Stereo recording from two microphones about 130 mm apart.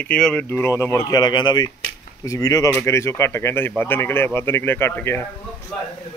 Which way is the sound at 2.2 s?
25° left (ahead or behind).